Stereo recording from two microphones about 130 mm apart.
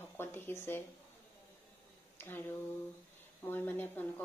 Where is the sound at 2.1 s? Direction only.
15° left (ahead or behind).